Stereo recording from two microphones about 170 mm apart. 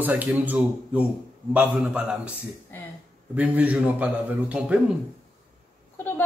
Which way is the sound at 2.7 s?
10° left (ahead or behind).